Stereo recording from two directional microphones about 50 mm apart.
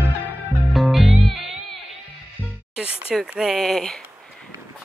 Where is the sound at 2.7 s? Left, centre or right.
Centre.